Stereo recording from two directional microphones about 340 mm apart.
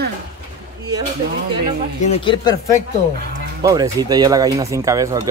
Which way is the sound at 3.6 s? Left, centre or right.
Centre.